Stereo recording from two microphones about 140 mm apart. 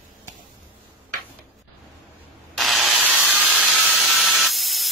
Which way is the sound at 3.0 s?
10° right (ahead or behind).